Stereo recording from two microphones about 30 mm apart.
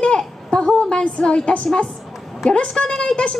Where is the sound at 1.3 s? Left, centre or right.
Left.